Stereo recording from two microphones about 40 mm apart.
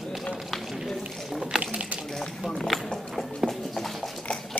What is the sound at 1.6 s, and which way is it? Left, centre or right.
Water tap, right.